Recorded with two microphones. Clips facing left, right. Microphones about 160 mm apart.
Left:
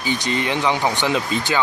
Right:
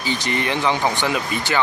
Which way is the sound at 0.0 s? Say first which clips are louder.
Left 1 dB; 15° left (ahead or behind).